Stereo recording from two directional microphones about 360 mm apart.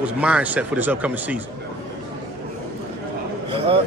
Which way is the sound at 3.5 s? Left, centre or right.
Centre.